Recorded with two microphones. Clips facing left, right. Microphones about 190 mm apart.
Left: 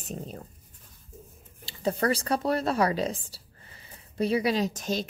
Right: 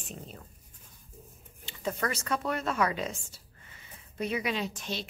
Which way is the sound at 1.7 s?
35° left (ahead or behind).